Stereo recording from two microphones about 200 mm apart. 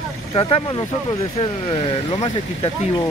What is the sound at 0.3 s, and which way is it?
Speech, 30° left (ahead or behind).